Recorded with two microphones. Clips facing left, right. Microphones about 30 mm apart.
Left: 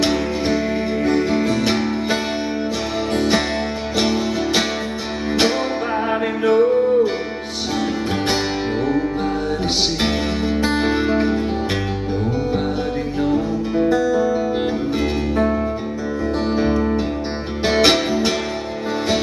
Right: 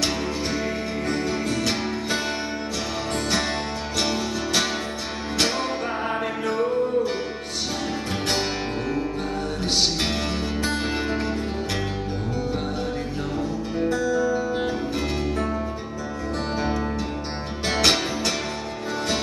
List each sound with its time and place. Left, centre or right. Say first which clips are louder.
1.0 s music: left 8 dB; centre
3.2 s music: left 6 dB; centre
6.4 s music: left 11 dB; centre
10.0 s music: left 6 dB; centre
13.7 s music: left 6 dB; centre
17.6 s music: left 6 dB; centre